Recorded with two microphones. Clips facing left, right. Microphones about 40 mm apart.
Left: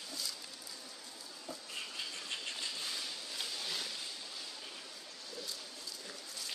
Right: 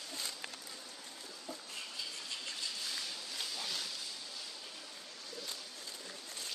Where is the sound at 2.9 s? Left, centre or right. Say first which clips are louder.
Even; centre.